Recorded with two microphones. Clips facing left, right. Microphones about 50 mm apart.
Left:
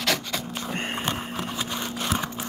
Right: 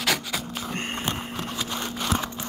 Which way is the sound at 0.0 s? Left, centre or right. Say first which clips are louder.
Even; centre.